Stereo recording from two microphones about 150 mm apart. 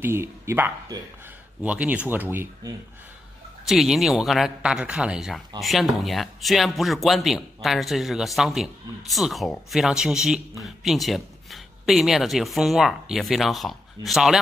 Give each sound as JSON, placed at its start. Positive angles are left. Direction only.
{"t": 0.0, "sound": "speech", "side_deg": -15}
{"t": 3.6, "sound": "speech", "side_deg": 0}